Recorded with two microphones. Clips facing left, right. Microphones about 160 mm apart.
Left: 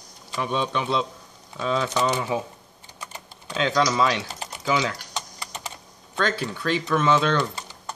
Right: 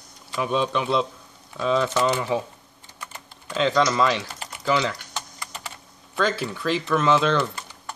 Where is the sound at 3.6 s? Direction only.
Centre (ahead or behind).